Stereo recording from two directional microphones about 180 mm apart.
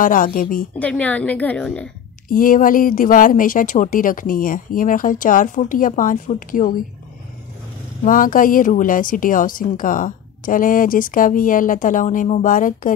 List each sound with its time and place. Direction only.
0.0 s speech: 50° left (ahead or behind)
0.7 s a woman's voice: 10° left (ahead or behind)
2.2 s speech: 50° left (ahead or behind)
8.0 s speech: 50° left (ahead or behind)